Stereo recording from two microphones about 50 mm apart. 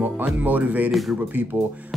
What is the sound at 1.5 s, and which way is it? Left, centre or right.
Speech, right.